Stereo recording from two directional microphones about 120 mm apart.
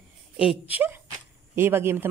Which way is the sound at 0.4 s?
10° right (ahead or behind).